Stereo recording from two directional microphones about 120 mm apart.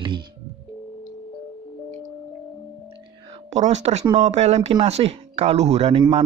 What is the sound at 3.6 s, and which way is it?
A man's voice, 70° right (ahead or behind).